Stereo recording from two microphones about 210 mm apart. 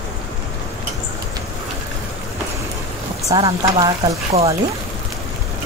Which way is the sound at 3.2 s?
20° right (ahead or behind).